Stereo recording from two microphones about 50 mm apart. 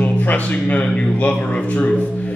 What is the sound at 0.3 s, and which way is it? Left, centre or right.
Speech, left.